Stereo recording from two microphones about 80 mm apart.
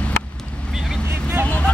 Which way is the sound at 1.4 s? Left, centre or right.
Centre.